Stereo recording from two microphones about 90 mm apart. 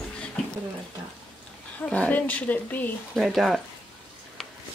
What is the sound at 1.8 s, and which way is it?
Speech, 15° left (ahead or behind).